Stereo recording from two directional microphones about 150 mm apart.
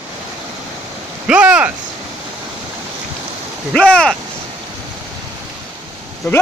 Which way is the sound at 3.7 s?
5° left (ahead or behind).